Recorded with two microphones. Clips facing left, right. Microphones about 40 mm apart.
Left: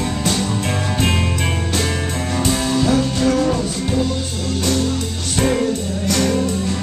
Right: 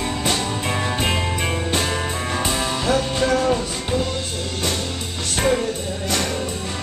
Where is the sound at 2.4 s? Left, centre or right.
Centre.